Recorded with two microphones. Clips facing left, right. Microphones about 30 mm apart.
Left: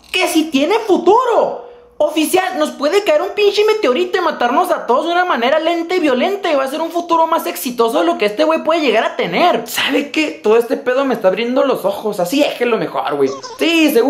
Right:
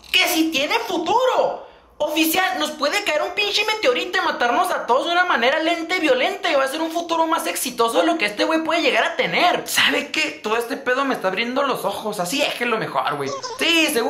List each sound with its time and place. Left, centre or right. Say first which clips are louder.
0.1 s a sound: left 4 dB; centre
0.7 s speech: left 10 dB; centre
2.2 s speech: left 5 dB; centre
2.9 s a woman's voice: left 8 dB; centre
4.1 s a woman's voice: left 5 dB; centre